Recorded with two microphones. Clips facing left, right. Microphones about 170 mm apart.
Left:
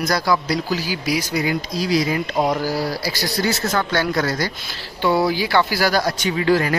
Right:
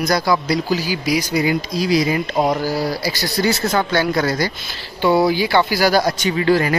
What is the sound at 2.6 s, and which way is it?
Speech, 10° left (ahead or behind).